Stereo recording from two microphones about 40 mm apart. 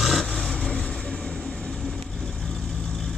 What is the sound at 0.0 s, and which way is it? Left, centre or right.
Vehicle, centre.